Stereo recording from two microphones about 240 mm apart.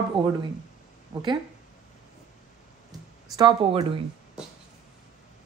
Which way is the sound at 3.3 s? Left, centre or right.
Centre.